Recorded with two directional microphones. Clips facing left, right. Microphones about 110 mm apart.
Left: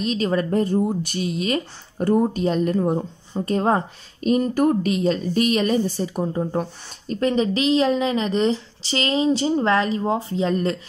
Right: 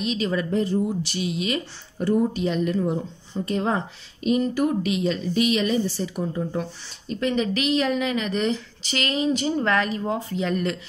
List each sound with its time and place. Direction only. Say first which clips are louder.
0.0 s speech: left 3 dB; 40° left (ahead or behind)